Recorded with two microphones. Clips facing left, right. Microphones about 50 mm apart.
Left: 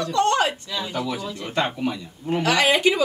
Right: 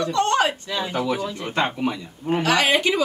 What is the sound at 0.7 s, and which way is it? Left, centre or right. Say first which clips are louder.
Speech: right 3 dB; right.